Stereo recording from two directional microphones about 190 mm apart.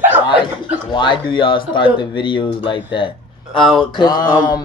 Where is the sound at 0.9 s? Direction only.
25° left (ahead or behind).